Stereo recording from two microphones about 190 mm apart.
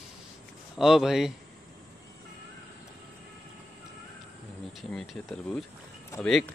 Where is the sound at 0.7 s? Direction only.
Centre (ahead or behind).